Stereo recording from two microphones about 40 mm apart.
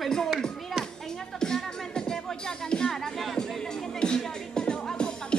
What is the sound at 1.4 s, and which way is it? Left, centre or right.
Music, centre.